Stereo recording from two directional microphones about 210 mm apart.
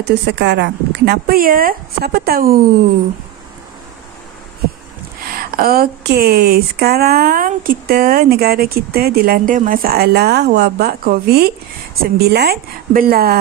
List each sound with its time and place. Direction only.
0.0 s speech: 55° right (ahead or behind)
5.3 s speech: 45° right (ahead or behind)